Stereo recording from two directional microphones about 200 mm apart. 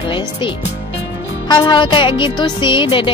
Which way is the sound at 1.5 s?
20° left (ahead or behind).